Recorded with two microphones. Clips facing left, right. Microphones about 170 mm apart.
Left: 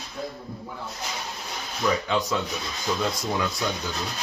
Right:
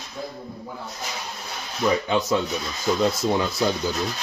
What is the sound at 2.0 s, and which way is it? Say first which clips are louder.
Speech: right 4 dB; 20° right (ahead or behind).